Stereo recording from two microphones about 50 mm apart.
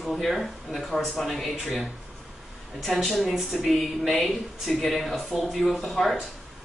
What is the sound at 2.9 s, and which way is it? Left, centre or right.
A man's voice, centre.